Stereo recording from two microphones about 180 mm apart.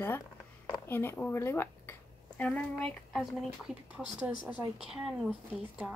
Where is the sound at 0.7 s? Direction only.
10° left (ahead or behind).